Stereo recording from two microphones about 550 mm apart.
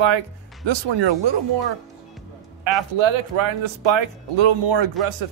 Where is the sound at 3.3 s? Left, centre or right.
Right.